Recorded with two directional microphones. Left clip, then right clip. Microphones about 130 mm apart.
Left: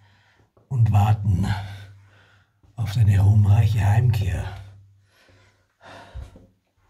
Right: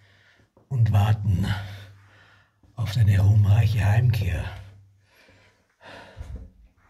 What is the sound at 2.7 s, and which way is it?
Speech, 15° left (ahead or behind).